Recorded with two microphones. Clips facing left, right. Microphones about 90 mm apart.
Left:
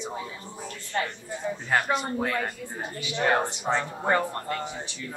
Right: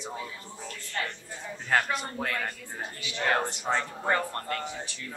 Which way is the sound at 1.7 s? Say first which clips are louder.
Left 2 dB; 10° left (ahead or behind).